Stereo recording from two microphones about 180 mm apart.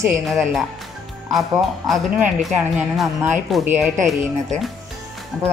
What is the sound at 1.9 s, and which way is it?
Speech, 5° right (ahead or behind).